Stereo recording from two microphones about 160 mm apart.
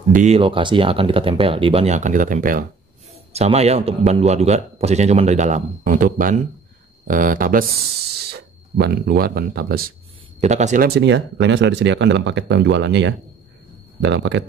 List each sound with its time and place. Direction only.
0.1 s speech: 50° right (ahead or behind)
0.4 s speech: 30° right (ahead or behind); by 2.6 s 55° right (ahead or behind)
3.1 s speech: 40° right (ahead or behind); by 7.6 s 60° right (ahead or behind)
8.3 s speech: 90° right; by 9.9 s 70° right (ahead or behind)
10.4 s speech: 45° right (ahead or behind)
10.8 s speech: 90° right
14.0 s speech: 90° right